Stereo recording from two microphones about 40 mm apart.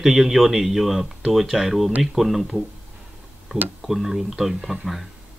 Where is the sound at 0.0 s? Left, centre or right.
Centre.